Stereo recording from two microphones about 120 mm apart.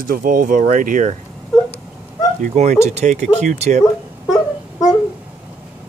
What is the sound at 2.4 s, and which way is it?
Speech, 70° right (ahead or behind).